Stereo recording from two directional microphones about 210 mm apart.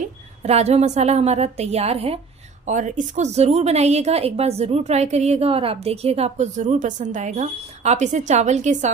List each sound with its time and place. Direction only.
0.4 s a woman's voice: 30° right (ahead or behind)